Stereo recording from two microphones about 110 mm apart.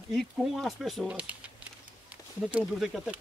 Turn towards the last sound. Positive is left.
turn(degrees=-5)  # may be behind; listen again after turning